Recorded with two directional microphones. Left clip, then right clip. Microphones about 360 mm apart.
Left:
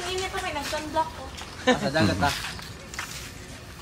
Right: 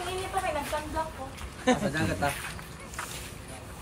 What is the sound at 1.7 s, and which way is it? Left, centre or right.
Speech, centre.